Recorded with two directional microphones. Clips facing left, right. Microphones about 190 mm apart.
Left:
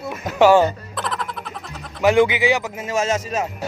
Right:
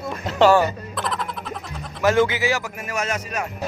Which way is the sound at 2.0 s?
15° left (ahead or behind).